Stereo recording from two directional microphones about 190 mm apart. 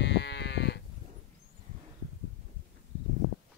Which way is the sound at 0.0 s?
65° left (ahead or behind).